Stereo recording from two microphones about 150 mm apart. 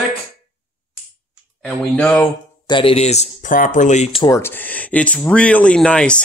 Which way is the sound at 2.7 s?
35° left (ahead or behind).